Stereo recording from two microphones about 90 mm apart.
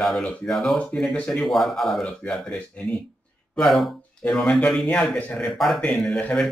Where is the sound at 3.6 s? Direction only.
Centre (ahead or behind).